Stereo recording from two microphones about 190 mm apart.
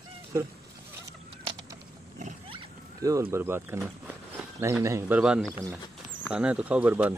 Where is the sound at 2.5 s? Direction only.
20° right (ahead or behind).